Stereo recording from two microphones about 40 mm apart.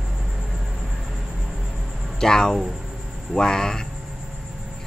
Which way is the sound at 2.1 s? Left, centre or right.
Centre.